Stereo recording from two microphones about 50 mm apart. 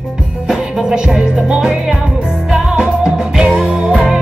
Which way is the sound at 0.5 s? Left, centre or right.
Centre.